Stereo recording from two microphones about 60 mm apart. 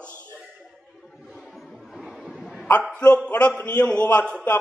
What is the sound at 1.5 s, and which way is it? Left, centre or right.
Music, centre.